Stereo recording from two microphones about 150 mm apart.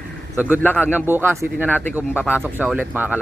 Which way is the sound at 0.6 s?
10° left (ahead or behind).